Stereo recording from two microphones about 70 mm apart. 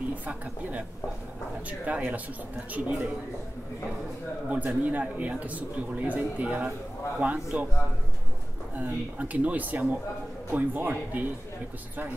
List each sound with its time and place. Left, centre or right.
0.1 s a woman's voice: right
4.5 s a man's voice: centre
8.7 s a man's voice: right